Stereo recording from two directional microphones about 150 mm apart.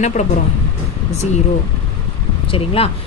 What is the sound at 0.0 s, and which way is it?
Speech, 50° left (ahead or behind).